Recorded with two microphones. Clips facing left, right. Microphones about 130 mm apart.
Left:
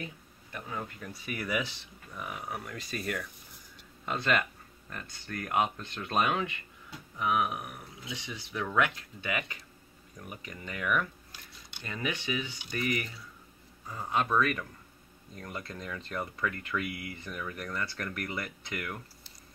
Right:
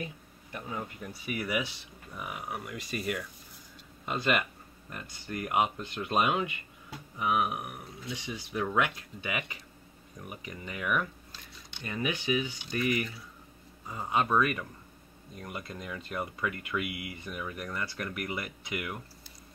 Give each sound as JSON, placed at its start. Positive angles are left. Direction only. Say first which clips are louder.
{"t": 0.5, "sound": "speech", "louder": "right 1 dB", "side_deg": -20}